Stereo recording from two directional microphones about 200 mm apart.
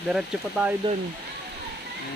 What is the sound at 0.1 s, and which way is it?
Speech, 5° right (ahead or behind).